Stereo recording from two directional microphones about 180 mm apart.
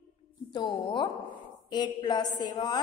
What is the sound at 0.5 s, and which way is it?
A woman's voice, 25° left (ahead or behind).